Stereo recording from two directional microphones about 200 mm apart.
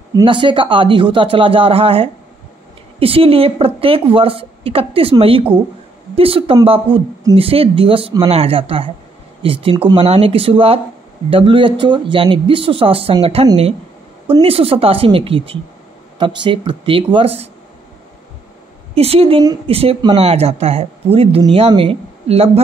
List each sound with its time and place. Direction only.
0.1 s a woman's voice: 25° right (ahead or behind)
18.9 s a woman's voice: 30° right (ahead or behind)